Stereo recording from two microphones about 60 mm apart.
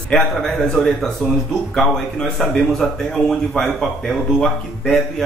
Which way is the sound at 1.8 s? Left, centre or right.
Centre.